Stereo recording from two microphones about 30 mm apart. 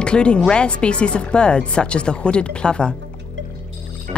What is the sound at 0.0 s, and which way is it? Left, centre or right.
Speech, left.